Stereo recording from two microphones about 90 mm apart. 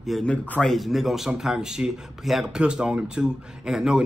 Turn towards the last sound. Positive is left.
turn(degrees=-5)  # may be behind; listen again after turning